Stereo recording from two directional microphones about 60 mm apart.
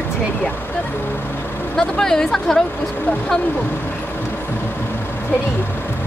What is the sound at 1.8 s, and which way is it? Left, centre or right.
Speech, centre.